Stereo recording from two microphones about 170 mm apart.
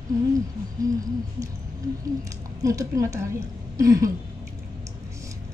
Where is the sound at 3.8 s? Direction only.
20° right (ahead or behind).